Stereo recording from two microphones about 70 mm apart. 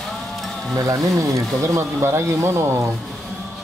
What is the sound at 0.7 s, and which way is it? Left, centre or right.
Speech, right.